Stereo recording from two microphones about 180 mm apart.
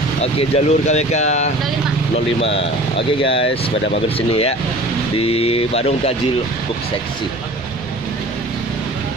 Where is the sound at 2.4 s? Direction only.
90° left.